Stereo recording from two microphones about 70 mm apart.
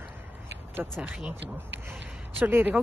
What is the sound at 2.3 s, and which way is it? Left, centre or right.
Speech, right.